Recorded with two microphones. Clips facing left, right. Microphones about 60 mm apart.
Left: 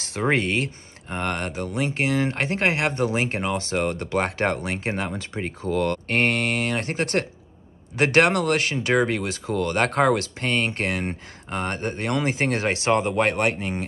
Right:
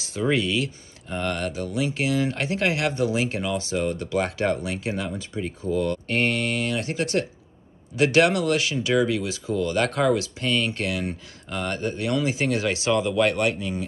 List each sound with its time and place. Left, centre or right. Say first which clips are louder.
0.0 s speech: left 1 dB; left